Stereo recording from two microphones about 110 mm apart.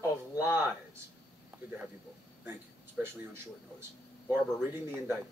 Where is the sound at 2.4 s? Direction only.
20° right (ahead or behind).